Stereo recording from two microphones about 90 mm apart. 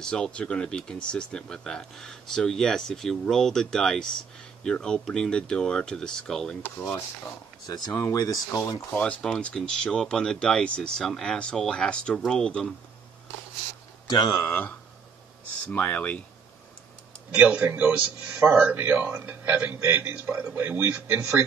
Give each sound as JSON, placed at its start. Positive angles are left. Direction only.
{"t": 0.0, "sound": "speech", "side_deg": 10}
{"t": 7.6, "sound": "speech", "side_deg": 50}
{"t": 7.9, "sound": "speech", "side_deg": 35}
{"t": 8.9, "sound": "speech", "side_deg": 10}
{"t": 14.0, "sound": "speech", "side_deg": 50}
{"t": 14.4, "sound": "speech", "side_deg": 20}
{"t": 17.3, "sound": "a man's voice", "side_deg": -15}